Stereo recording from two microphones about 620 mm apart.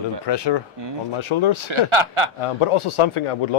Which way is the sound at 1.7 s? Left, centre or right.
Right.